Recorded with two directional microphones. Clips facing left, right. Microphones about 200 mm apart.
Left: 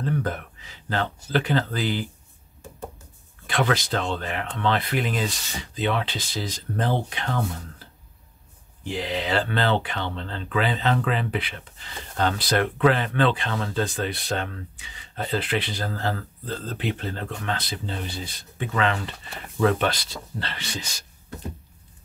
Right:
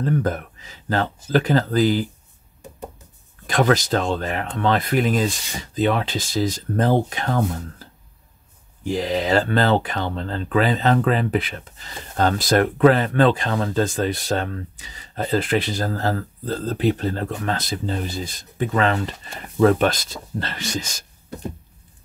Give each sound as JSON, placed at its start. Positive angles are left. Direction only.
{"t": 0.0, "sound": "speech", "side_deg": -45}
{"t": 3.4, "sound": "speech", "side_deg": -40}
{"t": 8.8, "sound": "speech", "side_deg": -40}